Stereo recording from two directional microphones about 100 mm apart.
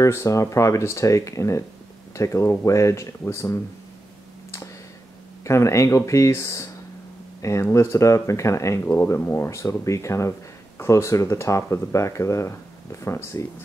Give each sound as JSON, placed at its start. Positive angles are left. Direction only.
{"t": 0.0, "sound": "speech", "side_deg": 30}
{"t": 5.4, "sound": "speech", "side_deg": 30}
{"t": 7.7, "sound": "speech", "side_deg": 30}